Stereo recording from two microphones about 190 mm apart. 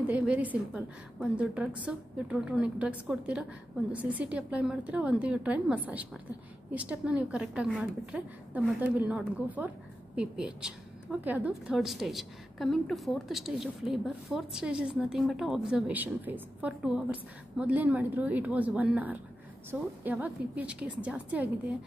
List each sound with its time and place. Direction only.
0.0 s a woman's voice: 5° right (ahead or behind)